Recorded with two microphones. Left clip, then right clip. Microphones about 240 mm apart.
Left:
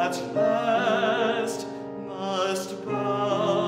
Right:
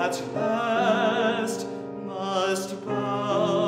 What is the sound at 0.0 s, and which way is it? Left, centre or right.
Music, right.